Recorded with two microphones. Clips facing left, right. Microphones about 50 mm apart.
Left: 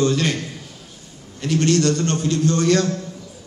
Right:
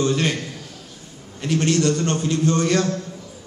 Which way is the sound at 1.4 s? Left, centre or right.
Centre.